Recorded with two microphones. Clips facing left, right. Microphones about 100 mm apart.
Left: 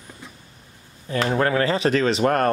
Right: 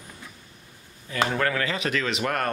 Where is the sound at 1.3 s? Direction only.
30° left (ahead or behind).